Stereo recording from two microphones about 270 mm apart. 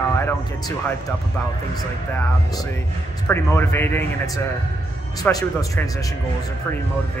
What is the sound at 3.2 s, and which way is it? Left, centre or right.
Speech, centre.